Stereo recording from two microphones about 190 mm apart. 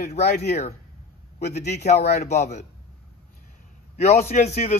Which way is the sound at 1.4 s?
60° left (ahead or behind).